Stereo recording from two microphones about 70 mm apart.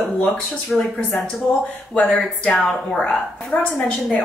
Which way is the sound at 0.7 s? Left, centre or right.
Centre.